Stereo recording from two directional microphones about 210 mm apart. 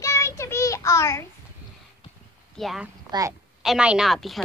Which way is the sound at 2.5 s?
Centre (ahead or behind).